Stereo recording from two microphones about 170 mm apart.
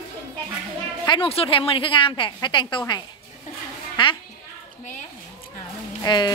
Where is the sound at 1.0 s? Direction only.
30° left (ahead or behind).